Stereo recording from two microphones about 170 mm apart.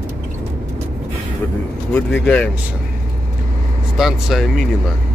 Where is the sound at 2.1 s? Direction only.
5° left (ahead or behind).